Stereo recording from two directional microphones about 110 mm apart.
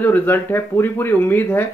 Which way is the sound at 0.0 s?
20° left (ahead or behind).